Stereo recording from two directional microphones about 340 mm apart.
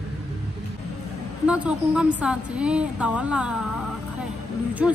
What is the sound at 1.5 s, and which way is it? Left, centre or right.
A woman's voice, centre.